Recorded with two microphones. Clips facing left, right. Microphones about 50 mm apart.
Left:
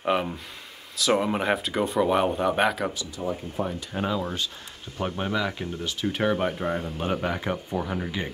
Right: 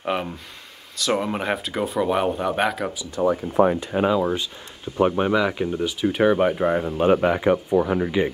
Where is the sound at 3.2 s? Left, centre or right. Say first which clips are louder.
Right 10 dB; right.